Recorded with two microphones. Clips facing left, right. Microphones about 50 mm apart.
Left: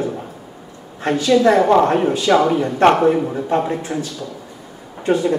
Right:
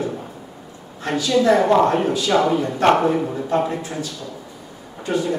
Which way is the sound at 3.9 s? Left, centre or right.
Centre.